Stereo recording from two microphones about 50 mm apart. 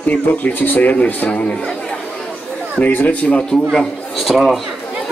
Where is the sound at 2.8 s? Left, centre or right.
Left.